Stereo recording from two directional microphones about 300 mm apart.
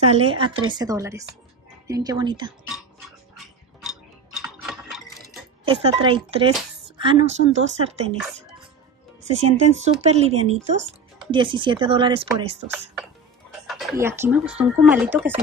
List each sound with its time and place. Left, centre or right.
0.1 s speech: centre
3.8 s tick-tock: centre
5.7 s speech: centre
13.7 s speech: centre